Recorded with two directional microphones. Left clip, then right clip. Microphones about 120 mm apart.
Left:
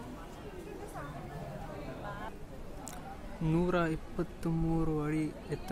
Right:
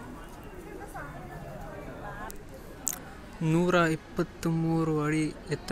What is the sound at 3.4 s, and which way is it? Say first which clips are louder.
Speech: right 6 dB; 15° right (ahead or behind).